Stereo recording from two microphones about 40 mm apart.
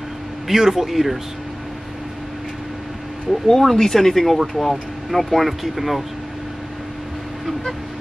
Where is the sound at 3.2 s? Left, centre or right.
Centre.